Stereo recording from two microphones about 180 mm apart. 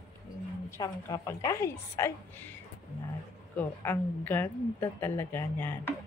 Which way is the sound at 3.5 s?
10° left (ahead or behind).